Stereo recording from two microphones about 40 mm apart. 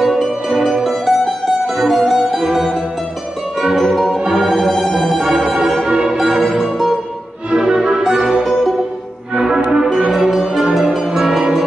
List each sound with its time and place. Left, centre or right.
0.0 s music: centre
5.9 s music: centre
7.5 s music: centre
9.6 s music: right
10.1 s music: centre